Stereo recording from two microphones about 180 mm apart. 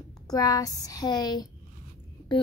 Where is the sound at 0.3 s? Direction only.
20° left (ahead or behind).